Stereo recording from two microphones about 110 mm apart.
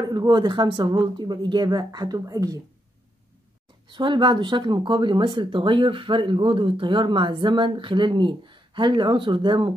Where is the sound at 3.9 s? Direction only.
45° right (ahead or behind).